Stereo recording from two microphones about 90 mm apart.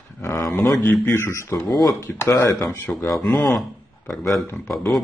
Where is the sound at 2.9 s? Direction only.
5° left (ahead or behind).